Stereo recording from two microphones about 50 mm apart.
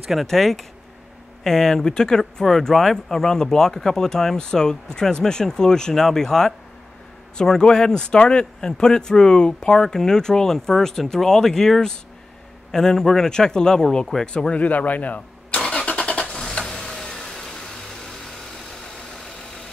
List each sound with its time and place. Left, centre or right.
0.1 s speech: centre
14.2 s speech: centre
14.6 s speech: left
15.6 s vehicle: left